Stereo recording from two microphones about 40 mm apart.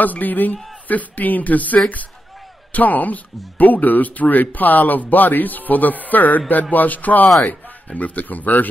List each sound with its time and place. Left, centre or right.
0.0 s speech: left